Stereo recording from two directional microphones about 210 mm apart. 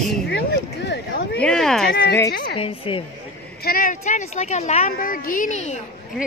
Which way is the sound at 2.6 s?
25° left (ahead or behind).